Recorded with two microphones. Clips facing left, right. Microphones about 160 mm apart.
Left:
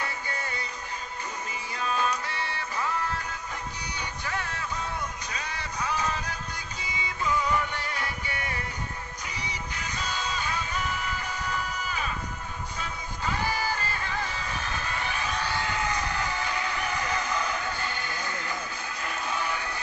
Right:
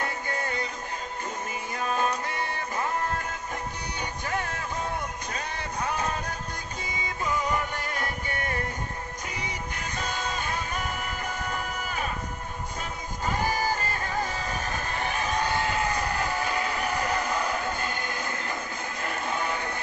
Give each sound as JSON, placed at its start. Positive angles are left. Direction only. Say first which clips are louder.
{"t": 1.8, "sound": "music", "louder": "right 1 dB", "side_deg": -50}
{"t": 4.3, "sound": "a sound", "louder": "right 2 dB", "side_deg": -50}
{"t": 6.9, "sound": "music", "louder": "left 1 dB", "side_deg": -45}
{"t": 13.2, "sound": "music", "louder": "right 2 dB", "side_deg": -45}